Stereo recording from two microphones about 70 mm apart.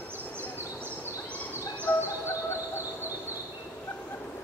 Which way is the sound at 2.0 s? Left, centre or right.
Left.